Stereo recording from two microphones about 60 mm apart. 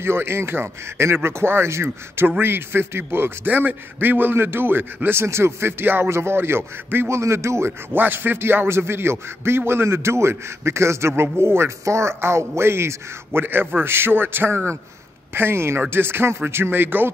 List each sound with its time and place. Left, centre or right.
0.0 s a man's voice: right
2.2 s a man's voice: right
7.9 s a man's voice: right